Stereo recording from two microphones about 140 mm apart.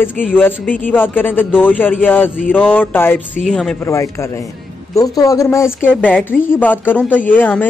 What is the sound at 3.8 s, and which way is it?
Speech, 20° left (ahead or behind).